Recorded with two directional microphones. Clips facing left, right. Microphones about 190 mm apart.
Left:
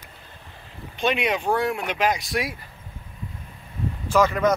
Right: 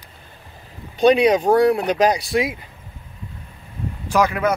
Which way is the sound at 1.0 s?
35° right (ahead or behind).